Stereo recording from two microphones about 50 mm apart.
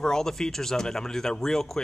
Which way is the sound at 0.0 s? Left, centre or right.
Centre.